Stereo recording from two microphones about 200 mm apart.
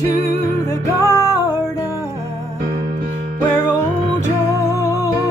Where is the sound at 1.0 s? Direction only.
15° left (ahead or behind).